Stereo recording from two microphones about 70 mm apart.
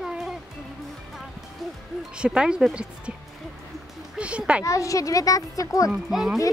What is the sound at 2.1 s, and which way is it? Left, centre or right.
Speech, centre.